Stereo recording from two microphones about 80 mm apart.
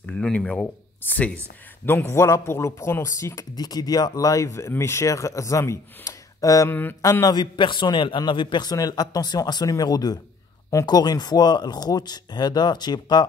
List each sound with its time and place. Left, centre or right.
0.0 s a sound: centre
1.0 s speech: centre
2.0 s speech: left
3.5 s speech: left
6.7 s speech: left
7.0 s speech: left
7.3 s a man's voice: left
8.6 s speech: left